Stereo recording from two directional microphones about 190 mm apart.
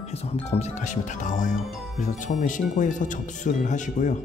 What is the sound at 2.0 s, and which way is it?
Speech, 40° left (ahead or behind).